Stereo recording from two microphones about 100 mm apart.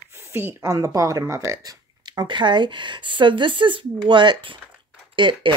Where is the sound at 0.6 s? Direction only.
35° right (ahead or behind).